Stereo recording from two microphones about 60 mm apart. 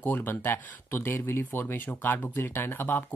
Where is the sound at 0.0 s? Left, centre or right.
Left.